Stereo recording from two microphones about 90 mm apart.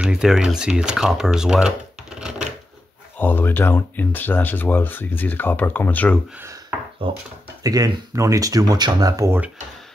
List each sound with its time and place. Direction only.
0.0 s speech: 5° right (ahead or behind)
3.2 s speech: 20° left (ahead or behind)
7.0 s speech: 70° right (ahead or behind)
7.6 s speech: 40° right (ahead or behind)